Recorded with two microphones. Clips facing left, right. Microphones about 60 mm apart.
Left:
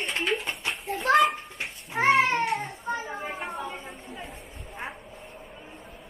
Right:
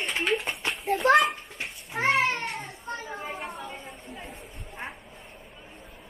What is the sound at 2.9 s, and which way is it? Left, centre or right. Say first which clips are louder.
Children playing: left 2 dB; centre.